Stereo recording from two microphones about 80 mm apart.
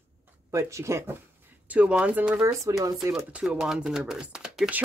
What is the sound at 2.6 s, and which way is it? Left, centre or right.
Speech, right.